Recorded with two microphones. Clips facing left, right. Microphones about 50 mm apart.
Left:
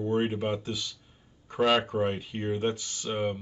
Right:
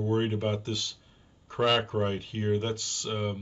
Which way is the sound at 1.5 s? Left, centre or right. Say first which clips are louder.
Left 1 dB; centre.